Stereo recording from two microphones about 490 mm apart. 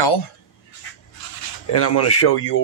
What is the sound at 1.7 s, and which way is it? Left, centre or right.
Speech, left.